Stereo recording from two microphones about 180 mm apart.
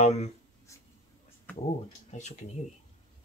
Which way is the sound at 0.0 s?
35° left (ahead or behind).